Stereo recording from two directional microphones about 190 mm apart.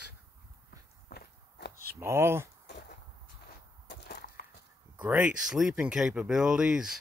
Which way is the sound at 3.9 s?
60° left (ahead or behind).